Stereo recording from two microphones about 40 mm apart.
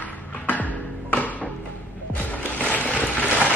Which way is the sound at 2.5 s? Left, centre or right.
Left.